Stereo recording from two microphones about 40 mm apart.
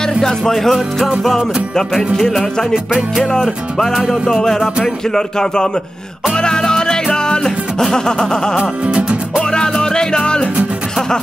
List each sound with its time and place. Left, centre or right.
0.2 s music: centre
0.7 s music: centre
1.2 s music: centre
2.7 s music: centre
3.7 s music: centre
8.8 s music: right
9.5 s music: centre